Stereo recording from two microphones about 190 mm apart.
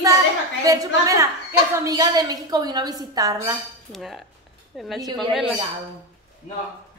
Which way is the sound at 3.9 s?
Centre (ahead or behind).